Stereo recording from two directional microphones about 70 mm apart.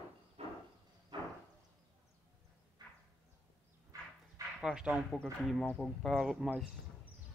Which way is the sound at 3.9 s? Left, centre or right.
Right.